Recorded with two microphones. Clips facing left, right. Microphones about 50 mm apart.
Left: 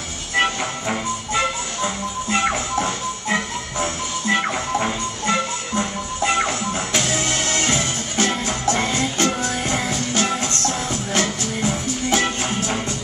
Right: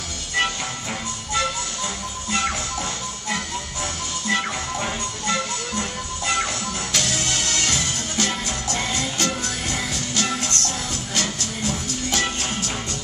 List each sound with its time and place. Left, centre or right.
0.4 s music: left